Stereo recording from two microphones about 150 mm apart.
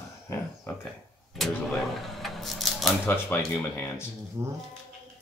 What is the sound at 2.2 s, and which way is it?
Keys jangling, centre (ahead or behind).